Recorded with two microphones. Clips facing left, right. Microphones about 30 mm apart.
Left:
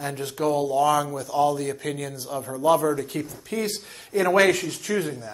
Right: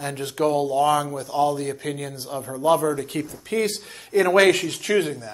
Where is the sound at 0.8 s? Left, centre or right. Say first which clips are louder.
Right 1 dB; right.